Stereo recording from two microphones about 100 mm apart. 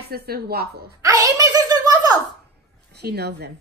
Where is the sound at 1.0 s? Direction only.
35° right (ahead or behind).